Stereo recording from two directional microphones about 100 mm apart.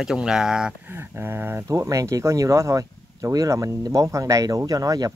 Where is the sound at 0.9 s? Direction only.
20° right (ahead or behind).